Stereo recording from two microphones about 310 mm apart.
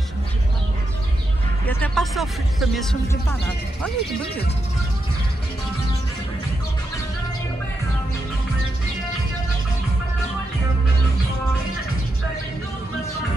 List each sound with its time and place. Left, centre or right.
1.7 s speech: centre